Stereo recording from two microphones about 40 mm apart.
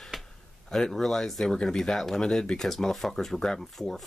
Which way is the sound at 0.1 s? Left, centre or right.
Centre.